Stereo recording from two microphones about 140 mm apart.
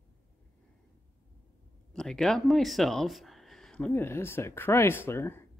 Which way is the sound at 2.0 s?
5° left (ahead or behind).